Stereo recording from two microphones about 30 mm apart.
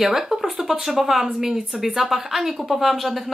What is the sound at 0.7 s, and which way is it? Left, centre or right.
Speech, centre.